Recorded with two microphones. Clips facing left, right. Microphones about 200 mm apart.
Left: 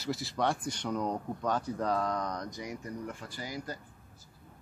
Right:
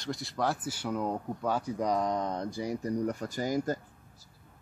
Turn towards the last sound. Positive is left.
turn(degrees=-45)  # may be behind; listen again after turning